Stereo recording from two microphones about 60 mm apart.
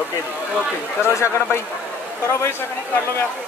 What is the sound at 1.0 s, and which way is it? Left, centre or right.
Speech, left.